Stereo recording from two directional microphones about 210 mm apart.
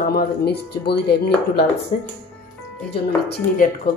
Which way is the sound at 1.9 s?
35° left (ahead or behind).